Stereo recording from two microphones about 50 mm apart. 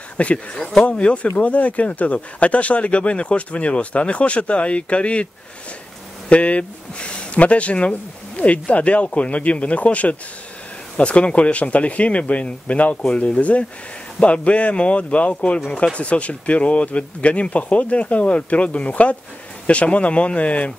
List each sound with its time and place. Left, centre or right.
0.2 s speech: left